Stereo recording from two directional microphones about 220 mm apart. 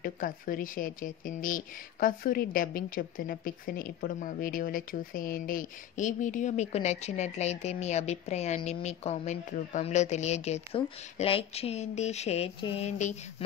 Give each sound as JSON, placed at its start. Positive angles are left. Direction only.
{"t": 0.0, "sound": "speech", "side_deg": 40}